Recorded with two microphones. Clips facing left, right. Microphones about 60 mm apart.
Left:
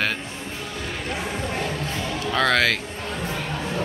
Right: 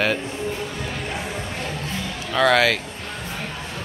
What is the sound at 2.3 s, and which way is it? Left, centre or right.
Speech, centre.